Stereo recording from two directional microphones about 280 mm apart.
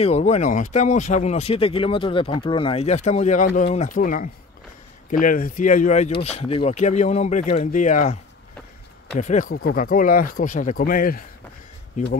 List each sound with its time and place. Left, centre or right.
0.0 s speech: left